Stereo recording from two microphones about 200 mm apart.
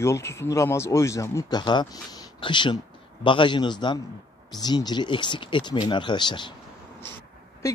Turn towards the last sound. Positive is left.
turn(degrees=20)  # may be behind; listen again after turning